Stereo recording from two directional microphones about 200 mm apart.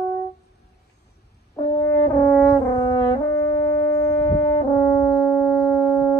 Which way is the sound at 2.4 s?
15° left (ahead or behind).